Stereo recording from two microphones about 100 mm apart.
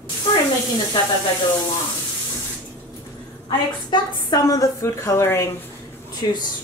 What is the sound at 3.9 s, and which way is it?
A woman's voice, 40° left (ahead or behind).